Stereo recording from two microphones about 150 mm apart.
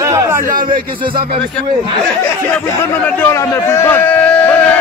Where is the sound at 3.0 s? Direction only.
15° left (ahead or behind).